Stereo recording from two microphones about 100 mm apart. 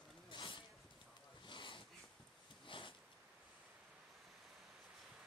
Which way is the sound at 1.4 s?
55° left (ahead or behind).